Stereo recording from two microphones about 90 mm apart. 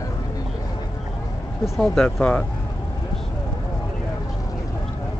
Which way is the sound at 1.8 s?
10° left (ahead or behind).